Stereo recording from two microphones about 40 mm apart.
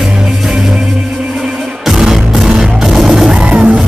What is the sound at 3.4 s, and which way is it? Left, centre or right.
Music, right.